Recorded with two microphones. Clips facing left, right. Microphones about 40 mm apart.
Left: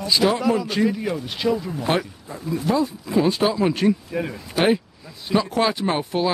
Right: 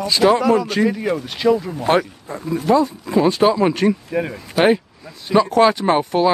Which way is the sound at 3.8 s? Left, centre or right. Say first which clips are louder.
Right 3 dB; centre.